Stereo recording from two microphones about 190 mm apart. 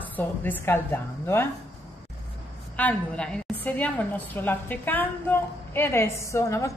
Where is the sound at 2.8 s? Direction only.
5° left (ahead or behind).